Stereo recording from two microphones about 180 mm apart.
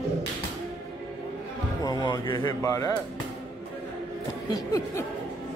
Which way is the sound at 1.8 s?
20° left (ahead or behind).